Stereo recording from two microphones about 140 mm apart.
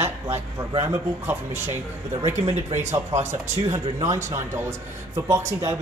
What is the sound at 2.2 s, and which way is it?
Speech, 50° right (ahead or behind).